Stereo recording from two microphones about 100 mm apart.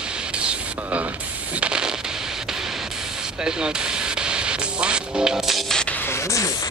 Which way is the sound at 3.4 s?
10° right (ahead or behind).